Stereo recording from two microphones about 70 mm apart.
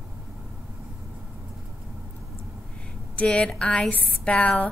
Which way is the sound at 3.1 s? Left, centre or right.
Centre.